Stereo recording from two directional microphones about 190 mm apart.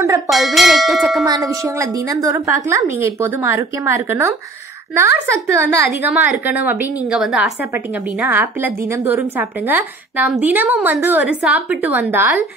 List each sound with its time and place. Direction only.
0.3 s speech: centre (ahead or behind)
1.2 s a woman's voice: 20° right (ahead or behind)
5.3 s a woman's voice: 15° right (ahead or behind)